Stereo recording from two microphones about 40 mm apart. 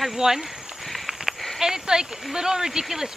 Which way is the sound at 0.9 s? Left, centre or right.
Centre.